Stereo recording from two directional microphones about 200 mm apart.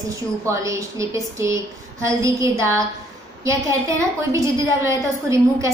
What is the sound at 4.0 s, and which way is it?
A woman's voice, 15° right (ahead or behind).